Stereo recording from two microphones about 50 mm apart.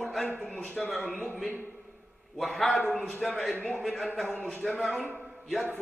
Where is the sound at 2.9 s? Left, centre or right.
Centre.